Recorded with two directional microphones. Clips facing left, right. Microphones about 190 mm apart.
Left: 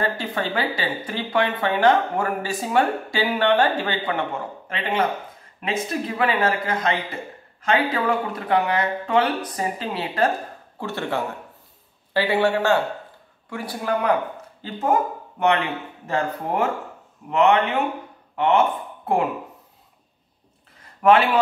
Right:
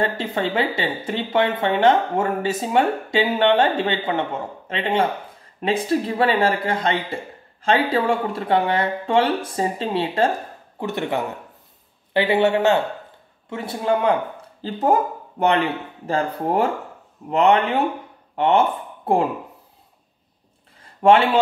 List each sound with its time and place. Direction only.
0.0 s speech: 25° right (ahead or behind)
14.6 s speech: 35° right (ahead or behind)
21.0 s speech: 30° right (ahead or behind)